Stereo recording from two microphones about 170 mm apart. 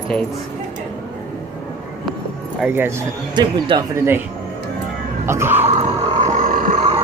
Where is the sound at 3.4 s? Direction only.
25° right (ahead or behind).